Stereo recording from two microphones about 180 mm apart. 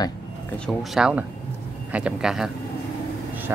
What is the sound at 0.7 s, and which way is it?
Speech, 5° right (ahead or behind).